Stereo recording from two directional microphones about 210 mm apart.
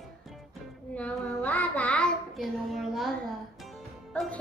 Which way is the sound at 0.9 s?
5° left (ahead or behind).